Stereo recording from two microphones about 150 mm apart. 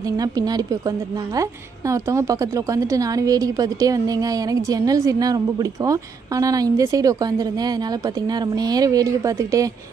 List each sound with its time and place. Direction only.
0.2 s a woman's voice: 25° right (ahead or behind)